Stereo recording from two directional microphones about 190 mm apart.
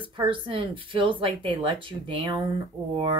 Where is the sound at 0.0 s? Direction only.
25° right (ahead or behind).